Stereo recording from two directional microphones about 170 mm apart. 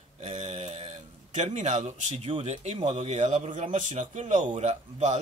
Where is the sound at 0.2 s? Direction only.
45° right (ahead or behind).